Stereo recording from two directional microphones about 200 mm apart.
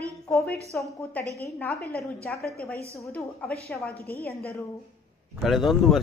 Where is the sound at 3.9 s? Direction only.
50° left (ahead or behind).